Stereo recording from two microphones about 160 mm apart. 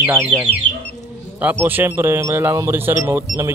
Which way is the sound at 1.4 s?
10° right (ahead or behind).